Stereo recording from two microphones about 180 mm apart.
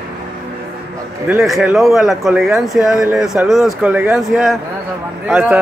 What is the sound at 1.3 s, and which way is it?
Speech, 5° right (ahead or behind).